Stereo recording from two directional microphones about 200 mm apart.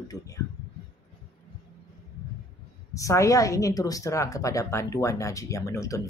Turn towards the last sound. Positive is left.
turn(degrees=15)  # may be behind; listen again after turning